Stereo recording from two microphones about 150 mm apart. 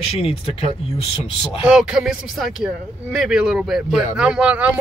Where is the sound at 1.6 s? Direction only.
5° right (ahead or behind).